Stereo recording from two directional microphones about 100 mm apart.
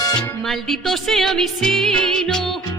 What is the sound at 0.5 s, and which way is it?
Music, centre (ahead or behind).